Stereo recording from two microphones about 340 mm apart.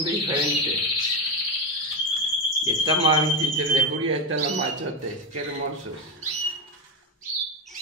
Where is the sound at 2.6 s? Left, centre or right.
Centre.